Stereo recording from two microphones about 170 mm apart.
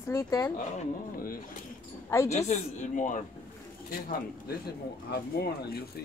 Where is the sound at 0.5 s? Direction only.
55° left (ahead or behind).